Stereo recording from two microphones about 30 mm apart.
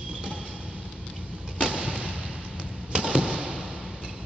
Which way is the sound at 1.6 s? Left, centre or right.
Right.